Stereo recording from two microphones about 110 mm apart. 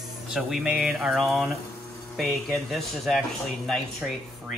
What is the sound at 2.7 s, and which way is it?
Speech, centre (ahead or behind).